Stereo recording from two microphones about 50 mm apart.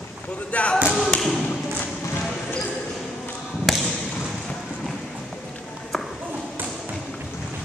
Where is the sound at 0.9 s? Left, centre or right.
Centre.